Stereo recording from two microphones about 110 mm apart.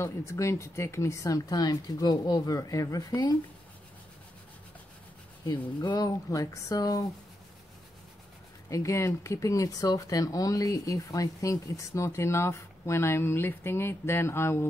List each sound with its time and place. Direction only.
0.0 s speech: 25° left (ahead or behind)
5.4 s speech: 40° left (ahead or behind)
8.6 s speech: 30° left (ahead or behind)